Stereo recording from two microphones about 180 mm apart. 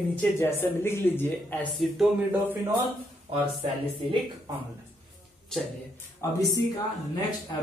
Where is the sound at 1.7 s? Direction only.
Centre (ahead or behind).